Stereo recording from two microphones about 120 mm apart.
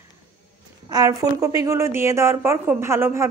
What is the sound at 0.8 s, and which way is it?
A woman's voice, 30° right (ahead or behind).